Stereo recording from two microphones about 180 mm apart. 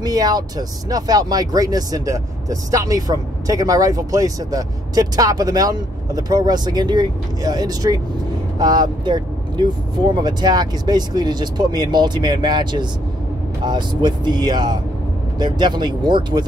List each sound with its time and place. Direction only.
0.0 s speech: 20° right (ahead or behind)